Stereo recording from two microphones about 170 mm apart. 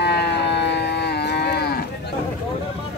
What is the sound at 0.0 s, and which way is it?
Cattle, 75° left (ahead or behind).